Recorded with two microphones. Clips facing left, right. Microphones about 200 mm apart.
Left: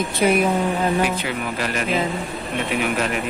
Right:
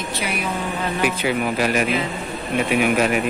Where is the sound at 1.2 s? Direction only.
15° right (ahead or behind).